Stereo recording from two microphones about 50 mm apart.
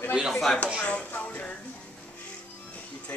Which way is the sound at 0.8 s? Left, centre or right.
Left.